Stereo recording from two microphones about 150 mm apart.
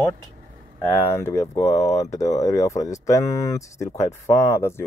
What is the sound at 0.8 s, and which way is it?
Speech, 15° left (ahead or behind).